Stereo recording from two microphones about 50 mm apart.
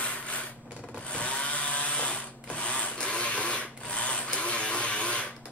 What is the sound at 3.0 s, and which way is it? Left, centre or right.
Printer, left.